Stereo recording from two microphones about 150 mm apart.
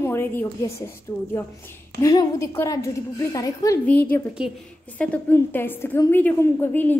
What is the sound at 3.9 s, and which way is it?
Speech, 10° left (ahead or behind).